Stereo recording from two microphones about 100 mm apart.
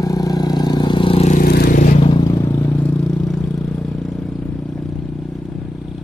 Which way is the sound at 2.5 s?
20° left (ahead or behind).